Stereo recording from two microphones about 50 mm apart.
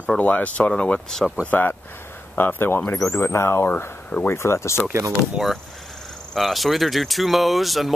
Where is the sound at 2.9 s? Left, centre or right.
Left.